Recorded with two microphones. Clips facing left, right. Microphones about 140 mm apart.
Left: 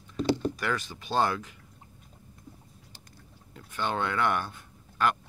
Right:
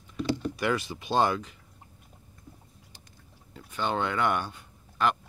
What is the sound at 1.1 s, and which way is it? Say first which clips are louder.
Speech: right 2 dB; 5° right (ahead or behind).